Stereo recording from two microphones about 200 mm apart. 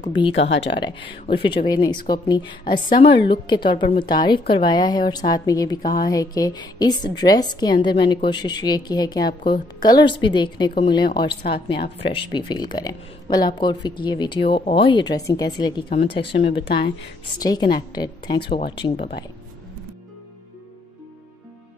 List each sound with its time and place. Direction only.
0.0 s speech: 25° left (ahead or behind)
0.3 s speech: 65° left (ahead or behind)
0.7 s speech: 25° left (ahead or behind)
16.0 s speech: 60° left (ahead or behind)
17.4 s speech: 20° left (ahead or behind)